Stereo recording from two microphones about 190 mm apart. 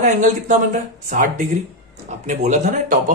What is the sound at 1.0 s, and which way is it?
Speech, 40° right (ahead or behind).